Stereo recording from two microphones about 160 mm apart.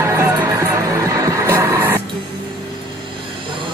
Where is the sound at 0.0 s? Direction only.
15° right (ahead or behind).